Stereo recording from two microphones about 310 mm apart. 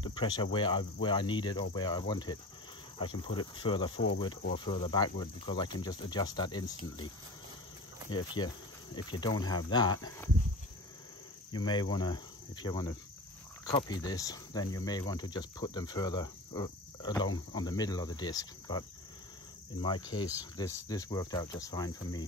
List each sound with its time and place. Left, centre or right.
0.0 s speech: centre
8.1 s speech: centre
11.5 s speech: centre